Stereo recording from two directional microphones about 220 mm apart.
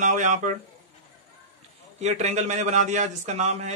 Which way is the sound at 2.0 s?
30° right (ahead or behind).